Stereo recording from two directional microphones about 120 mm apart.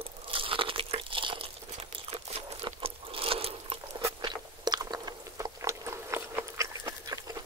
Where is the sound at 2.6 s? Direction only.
50° right (ahead or behind).